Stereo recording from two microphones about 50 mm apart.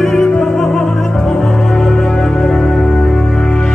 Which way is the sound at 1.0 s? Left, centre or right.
Centre.